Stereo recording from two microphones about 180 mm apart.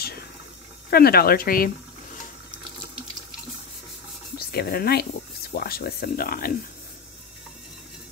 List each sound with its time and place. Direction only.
0.8 s speech: 60° left (ahead or behind)
4.4 s speech: 60° left (ahead or behind)